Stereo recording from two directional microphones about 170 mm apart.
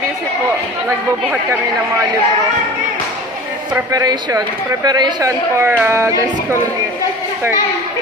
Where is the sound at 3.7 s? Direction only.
20° right (ahead or behind).